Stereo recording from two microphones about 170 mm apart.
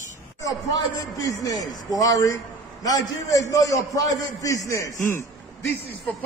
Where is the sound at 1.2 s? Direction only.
20° left (ahead or behind).